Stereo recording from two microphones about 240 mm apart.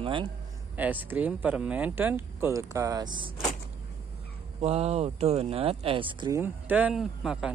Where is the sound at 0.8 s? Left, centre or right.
Centre.